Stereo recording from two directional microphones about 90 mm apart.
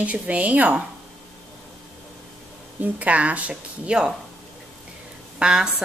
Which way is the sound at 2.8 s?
15° right (ahead or behind).